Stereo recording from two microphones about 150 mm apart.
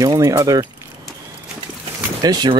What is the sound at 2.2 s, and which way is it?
Speech, 25° right (ahead or behind).